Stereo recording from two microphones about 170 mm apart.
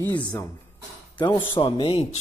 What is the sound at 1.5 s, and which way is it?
Speech, 30° left (ahead or behind).